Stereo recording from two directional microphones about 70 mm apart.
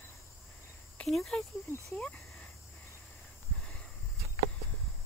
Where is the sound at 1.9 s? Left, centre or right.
Left.